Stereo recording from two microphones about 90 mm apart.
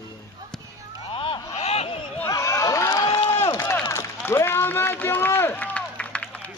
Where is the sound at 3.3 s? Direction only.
45° left (ahead or behind).